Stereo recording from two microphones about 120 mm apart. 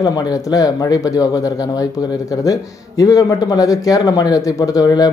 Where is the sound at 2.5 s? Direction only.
30° left (ahead or behind).